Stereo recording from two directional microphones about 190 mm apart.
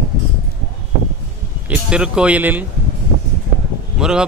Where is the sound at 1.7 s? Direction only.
5° right (ahead or behind).